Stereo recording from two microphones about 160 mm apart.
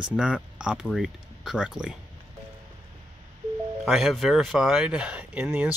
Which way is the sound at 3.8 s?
Centre (ahead or behind).